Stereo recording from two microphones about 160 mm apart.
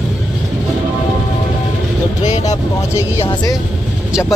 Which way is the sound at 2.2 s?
45° left (ahead or behind).